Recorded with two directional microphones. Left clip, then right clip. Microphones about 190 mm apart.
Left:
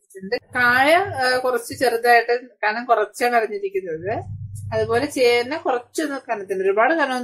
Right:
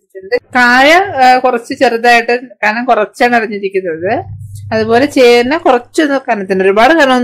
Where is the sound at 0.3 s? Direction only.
40° right (ahead or behind).